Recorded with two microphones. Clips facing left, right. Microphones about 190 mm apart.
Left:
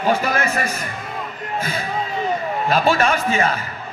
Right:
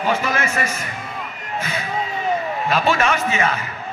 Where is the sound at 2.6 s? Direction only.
35° left (ahead or behind).